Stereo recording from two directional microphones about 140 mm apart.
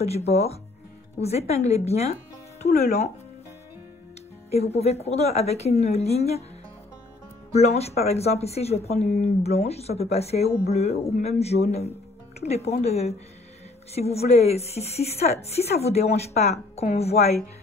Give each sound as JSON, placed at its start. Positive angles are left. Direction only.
{"t": 0.0, "sound": "a woman's voice", "side_deg": 50}
{"t": 4.5, "sound": "a woman's voice", "side_deg": 50}
{"t": 7.5, "sound": "a woman's voice", "side_deg": 50}